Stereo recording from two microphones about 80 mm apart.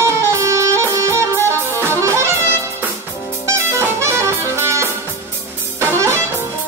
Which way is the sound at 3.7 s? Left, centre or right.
Right.